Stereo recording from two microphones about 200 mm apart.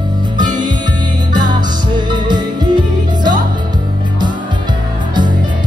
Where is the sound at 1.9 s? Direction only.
20° right (ahead or behind).